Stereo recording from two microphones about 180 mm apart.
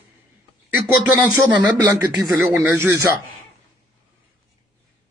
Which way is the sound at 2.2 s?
15° right (ahead or behind).